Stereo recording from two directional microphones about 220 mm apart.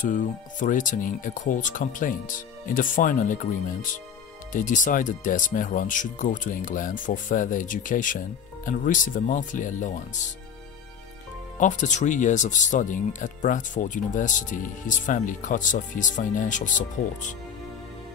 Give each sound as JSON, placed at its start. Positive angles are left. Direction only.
{"t": 0.1, "sound": "speech", "side_deg": 35}
{"t": 4.5, "sound": "speech", "side_deg": 35}
{"t": 11.6, "sound": "speech", "side_deg": 35}